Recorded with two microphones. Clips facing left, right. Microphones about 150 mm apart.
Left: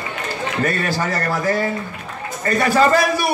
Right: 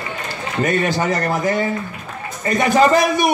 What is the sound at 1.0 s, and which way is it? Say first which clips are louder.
A man's voice: right 2 dB; 20° right (ahead or behind).